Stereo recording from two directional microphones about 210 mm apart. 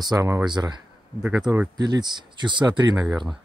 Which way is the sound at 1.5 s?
15° right (ahead or behind).